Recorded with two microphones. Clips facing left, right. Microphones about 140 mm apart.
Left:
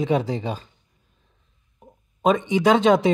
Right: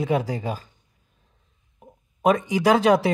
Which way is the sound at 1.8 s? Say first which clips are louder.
Right 1 dB; 5° right (ahead or behind).